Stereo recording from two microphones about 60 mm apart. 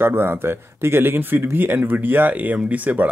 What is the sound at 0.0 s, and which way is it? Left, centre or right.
Speech, right.